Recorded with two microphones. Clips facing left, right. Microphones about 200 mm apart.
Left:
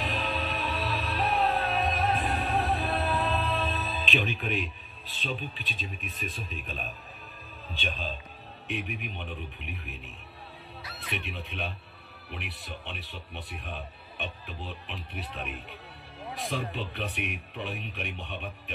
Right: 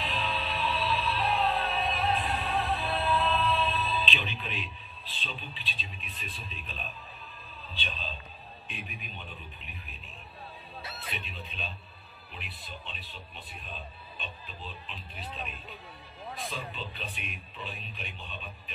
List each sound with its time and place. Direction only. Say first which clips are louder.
0.0 s music: left 2 dB; 45° left (ahead or behind)
5.2 s a man's voice: left 8 dB; 45° left (ahead or behind)
8.6 s a man's voice: left 10 dB; 70° left (ahead or behind)
11.1 s a man's voice: left 5 dB; 70° left (ahead or behind)